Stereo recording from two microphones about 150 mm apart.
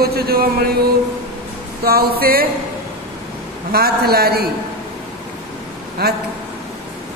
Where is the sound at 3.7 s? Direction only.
90° right.